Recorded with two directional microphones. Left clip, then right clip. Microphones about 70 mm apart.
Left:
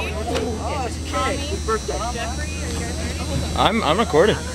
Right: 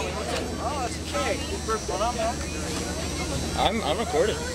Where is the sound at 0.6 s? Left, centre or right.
Left.